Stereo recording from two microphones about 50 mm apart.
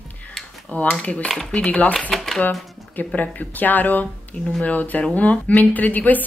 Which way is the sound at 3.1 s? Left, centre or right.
Left.